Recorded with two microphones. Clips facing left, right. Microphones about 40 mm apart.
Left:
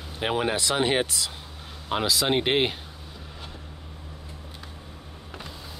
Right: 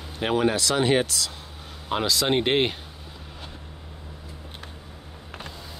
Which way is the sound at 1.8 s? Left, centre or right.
Centre.